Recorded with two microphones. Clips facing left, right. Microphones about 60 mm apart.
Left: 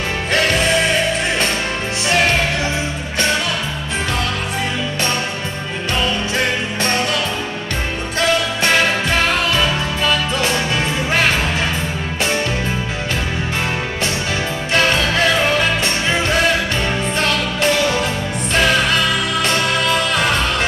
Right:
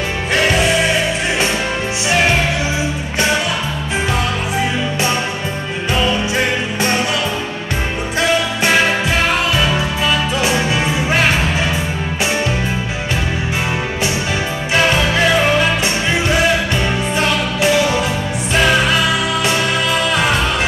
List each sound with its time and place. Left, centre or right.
0.3 s music: centre
5.9 s music: centre
8.2 s music: centre
14.7 s music: centre